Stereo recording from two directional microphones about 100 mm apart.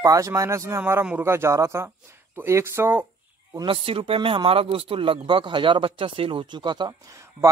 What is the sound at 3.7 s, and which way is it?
Speech, 65° right (ahead or behind).